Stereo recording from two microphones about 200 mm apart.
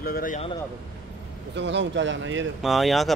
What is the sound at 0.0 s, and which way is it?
Speech, 45° left (ahead or behind).